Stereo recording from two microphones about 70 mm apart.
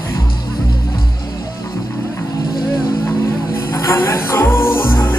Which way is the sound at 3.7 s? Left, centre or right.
Left.